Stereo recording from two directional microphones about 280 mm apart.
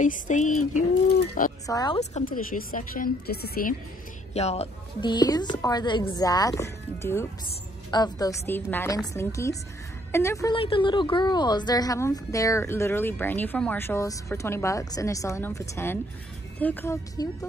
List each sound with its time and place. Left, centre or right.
0.0 s a woman's voice: left
1.7 s a woman's voice: centre
2.1 s a woman's voice: left; by 17.5 s centre